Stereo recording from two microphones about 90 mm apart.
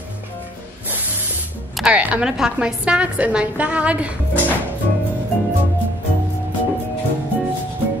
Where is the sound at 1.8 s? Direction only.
15° right (ahead or behind).